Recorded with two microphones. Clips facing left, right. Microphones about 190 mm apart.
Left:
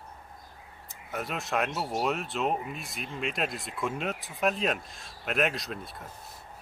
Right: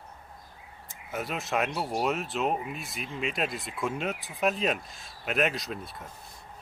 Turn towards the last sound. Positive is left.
turn(degrees=0)  # may be behind; listen again after turning